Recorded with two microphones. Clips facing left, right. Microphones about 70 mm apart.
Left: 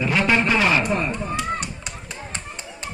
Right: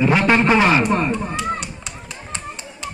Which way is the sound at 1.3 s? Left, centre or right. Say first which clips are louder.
Right 1 dB; left.